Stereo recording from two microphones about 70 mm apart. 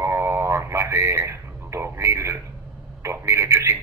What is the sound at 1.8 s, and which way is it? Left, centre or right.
Speech, right.